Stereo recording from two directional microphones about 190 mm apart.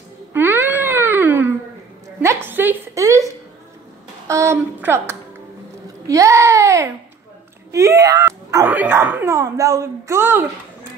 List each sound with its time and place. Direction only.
0.3 s a sound: 10° right (ahead or behind)
2.1 s a woman's voice: 10° right (ahead or behind)
4.3 s a woman's voice: 15° right (ahead or behind)